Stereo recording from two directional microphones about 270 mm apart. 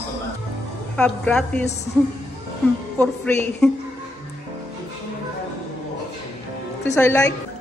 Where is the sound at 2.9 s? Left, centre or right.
Centre.